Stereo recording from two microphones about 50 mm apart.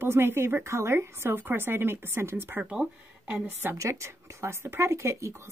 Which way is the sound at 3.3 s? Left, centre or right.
Right.